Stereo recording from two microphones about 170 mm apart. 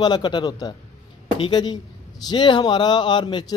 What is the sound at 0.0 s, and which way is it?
Speech, 25° left (ahead or behind).